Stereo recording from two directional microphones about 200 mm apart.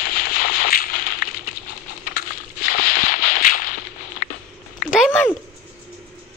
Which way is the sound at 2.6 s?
45° left (ahead or behind).